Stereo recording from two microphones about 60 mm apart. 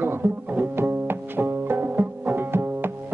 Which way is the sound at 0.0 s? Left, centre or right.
Right.